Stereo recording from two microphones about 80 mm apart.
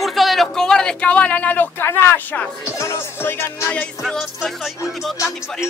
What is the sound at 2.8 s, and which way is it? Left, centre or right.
Music, left.